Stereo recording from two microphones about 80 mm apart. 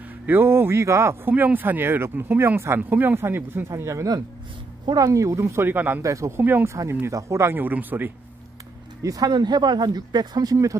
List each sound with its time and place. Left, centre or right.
0.3 s speech: right
1.3 s speech: right
6.0 s speech: right
6.4 s speech: right
7.5 s speech: right
9.0 s speech: right
9.3 s speech: right